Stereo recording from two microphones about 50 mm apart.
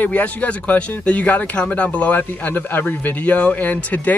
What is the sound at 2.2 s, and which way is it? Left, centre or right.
A man's voice, left.